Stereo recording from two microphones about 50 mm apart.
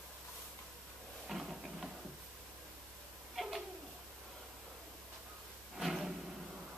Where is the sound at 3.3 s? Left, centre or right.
Centre.